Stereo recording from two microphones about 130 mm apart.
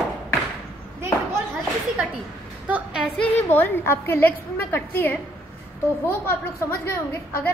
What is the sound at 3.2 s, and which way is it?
A woman's voice, 15° left (ahead or behind).